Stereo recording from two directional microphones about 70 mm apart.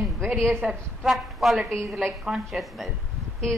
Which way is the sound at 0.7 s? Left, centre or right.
Centre.